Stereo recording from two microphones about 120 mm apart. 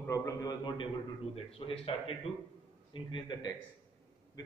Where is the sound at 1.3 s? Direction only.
50° left (ahead or behind).